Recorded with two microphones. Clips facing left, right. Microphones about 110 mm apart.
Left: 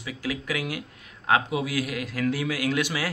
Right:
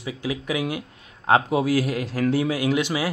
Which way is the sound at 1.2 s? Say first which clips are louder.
Right 5 dB; 40° right (ahead or behind).